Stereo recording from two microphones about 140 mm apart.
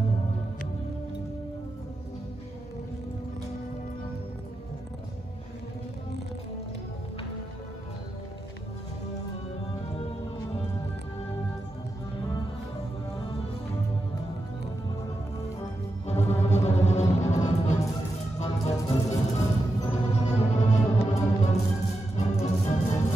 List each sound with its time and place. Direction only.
16.1 s music: 50° left (ahead or behind)